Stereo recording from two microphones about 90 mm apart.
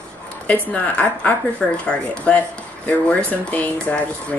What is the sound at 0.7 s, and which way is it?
Speech, 15° left (ahead or behind).